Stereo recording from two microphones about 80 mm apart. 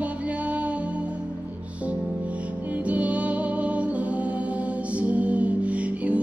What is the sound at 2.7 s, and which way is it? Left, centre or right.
Music, centre.